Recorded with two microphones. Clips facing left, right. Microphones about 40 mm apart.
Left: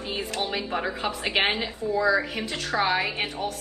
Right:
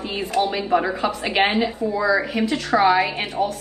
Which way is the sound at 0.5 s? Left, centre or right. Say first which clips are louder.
Right 8 dB; centre.